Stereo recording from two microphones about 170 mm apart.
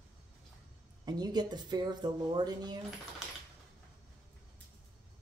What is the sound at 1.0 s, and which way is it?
Speech, 25° right (ahead or behind).